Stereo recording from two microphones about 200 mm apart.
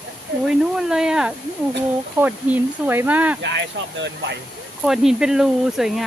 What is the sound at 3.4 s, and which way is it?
Speech, 60° right (ahead or behind).